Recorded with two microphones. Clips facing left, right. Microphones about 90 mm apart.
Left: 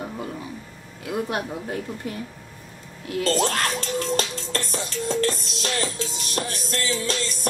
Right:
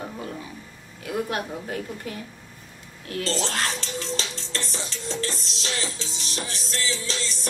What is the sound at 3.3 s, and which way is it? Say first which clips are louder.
Music: left 5 dB; 45° left (ahead or behind).